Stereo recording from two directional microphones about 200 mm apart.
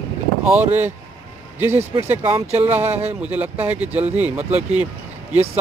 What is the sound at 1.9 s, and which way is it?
Speech, 10° right (ahead or behind).